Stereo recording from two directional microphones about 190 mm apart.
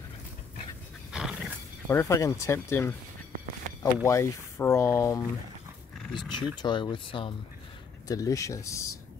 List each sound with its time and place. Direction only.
1.1 s wild animals: 5° right (ahead or behind)
1.9 s speech: 15° left (ahead or behind)